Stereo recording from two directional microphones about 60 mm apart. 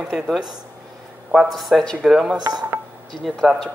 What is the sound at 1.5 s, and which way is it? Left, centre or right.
Speech, centre.